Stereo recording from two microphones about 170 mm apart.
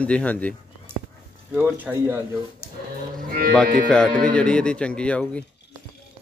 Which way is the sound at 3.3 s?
60° right (ahead or behind).